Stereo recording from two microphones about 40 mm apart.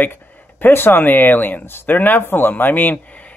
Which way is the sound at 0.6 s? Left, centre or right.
Left.